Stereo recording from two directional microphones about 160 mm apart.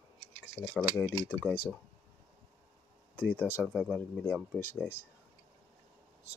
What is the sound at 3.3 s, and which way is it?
Speech, 10° left (ahead or behind).